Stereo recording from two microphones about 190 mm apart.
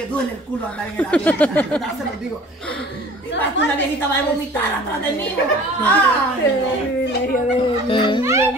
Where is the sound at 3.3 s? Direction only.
70° left (ahead or behind).